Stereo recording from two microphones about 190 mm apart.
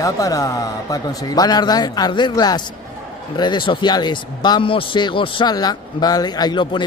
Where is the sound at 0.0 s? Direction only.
15° left (ahead or behind).